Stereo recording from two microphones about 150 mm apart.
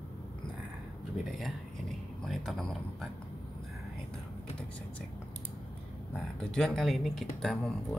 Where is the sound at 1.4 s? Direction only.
Centre (ahead or behind).